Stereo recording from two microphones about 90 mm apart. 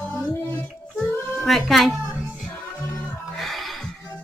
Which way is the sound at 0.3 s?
30° left (ahead or behind).